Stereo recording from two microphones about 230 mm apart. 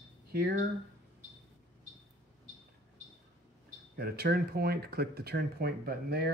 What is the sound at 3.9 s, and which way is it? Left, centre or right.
Speech, right.